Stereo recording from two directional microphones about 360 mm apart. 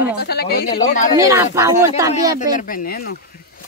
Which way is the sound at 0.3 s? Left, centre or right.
Left.